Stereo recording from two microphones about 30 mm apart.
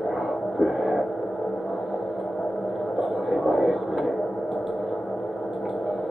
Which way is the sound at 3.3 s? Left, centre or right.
Centre.